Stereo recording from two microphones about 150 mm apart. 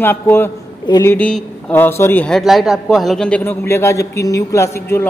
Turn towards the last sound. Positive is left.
turn(degrees=20)  # may be behind; listen again after turning